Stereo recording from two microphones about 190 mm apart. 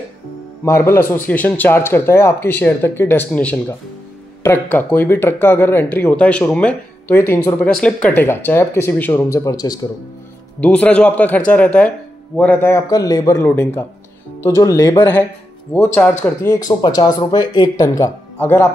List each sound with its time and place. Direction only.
0.7 s speech: 15° left (ahead or behind)
10.6 s speech: 5° left (ahead or behind)